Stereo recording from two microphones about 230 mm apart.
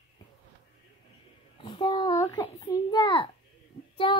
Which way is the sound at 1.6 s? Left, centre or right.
Left.